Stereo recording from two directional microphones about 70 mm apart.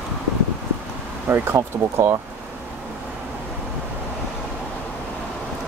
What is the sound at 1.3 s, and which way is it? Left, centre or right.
Speech, right.